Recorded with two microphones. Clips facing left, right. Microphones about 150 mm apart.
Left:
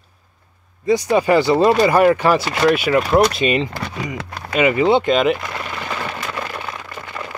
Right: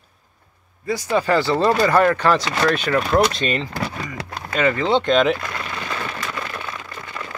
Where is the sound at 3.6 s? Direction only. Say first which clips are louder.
Left 2 dB; 20° left (ahead or behind).